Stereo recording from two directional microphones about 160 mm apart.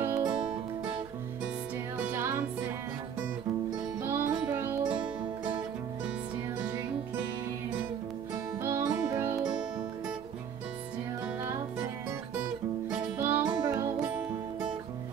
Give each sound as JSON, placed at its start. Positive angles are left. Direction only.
{"t": 0.0, "sound": "music", "side_deg": -15}
{"t": 2.0, "sound": "music", "side_deg": -10}
{"t": 4.0, "sound": "music", "side_deg": -15}
{"t": 8.6, "sound": "music", "side_deg": -20}
{"t": 13.2, "sound": "music", "side_deg": -10}
{"t": 13.5, "sound": "music", "side_deg": -25}